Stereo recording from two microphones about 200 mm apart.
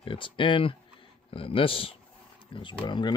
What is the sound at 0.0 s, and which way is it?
Speech, 25° left (ahead or behind).